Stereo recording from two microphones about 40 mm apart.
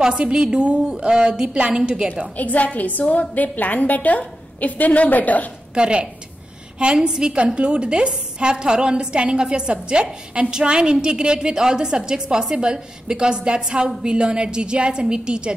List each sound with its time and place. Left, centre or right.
0.0 s a woman's voice: right
2.3 s a woman's voice: left
5.8 s a woman's voice: right